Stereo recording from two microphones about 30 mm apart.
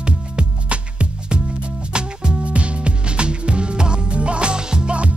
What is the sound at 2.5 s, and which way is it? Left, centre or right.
Music, right.